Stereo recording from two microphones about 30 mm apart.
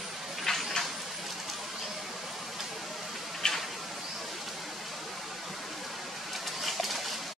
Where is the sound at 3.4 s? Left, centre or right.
Left.